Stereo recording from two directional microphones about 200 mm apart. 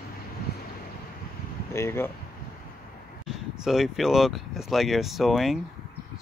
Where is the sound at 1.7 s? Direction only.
10° left (ahead or behind).